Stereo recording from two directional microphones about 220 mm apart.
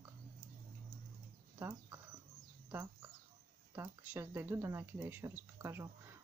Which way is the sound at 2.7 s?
10° right (ahead or behind).